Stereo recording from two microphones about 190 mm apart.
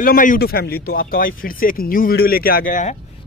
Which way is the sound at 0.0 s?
45° left (ahead or behind).